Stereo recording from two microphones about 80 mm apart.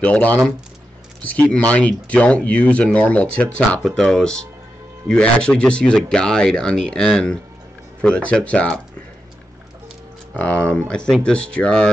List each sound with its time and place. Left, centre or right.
0.0 s speech: centre
3.8 s speech: centre
10.3 s speech: centre